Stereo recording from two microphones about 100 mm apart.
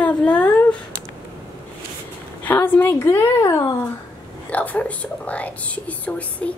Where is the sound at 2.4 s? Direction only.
20° left (ahead or behind).